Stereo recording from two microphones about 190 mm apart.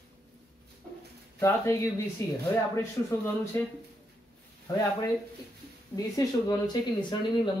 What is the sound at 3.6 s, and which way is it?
Speech, 15° left (ahead or behind).